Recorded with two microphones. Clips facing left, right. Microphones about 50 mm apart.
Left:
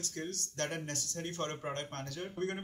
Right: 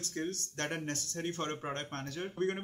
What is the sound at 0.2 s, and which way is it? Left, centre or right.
Speech, right.